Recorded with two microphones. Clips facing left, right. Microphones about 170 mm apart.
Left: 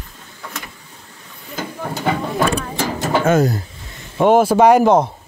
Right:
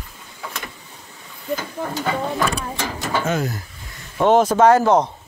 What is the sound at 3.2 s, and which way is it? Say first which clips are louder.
Speech: left 10 dB; 50° left (ahead or behind).